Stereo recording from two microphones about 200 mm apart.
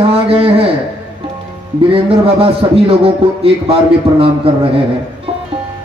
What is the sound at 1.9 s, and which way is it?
A man's voice, 30° right (ahead or behind).